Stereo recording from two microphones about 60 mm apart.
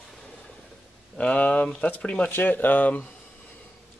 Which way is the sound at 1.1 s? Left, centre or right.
Left.